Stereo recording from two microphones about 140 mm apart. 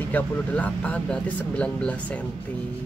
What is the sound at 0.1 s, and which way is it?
Speech, 10° left (ahead or behind).